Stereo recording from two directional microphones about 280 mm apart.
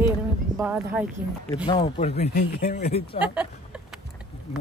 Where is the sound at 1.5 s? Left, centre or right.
Centre.